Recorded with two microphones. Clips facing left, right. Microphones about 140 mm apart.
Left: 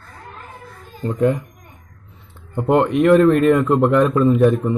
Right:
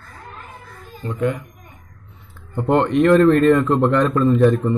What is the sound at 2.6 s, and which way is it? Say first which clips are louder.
A man's voice: left 1 dB; 5° left (ahead or behind).